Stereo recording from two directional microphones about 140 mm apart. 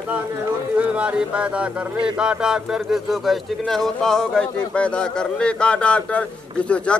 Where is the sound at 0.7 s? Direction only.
10° right (ahead or behind).